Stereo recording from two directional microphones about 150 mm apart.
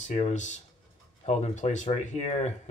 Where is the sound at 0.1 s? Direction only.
55° left (ahead or behind).